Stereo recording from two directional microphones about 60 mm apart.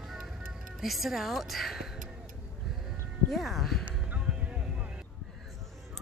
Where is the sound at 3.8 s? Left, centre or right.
Right.